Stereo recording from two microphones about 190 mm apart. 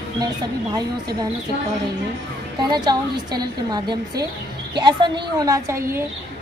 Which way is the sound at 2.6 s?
20° right (ahead or behind).